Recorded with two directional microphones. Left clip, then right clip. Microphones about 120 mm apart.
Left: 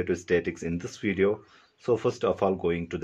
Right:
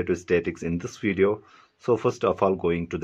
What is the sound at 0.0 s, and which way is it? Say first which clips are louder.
Speech: right 2 dB; 35° right (ahead or behind).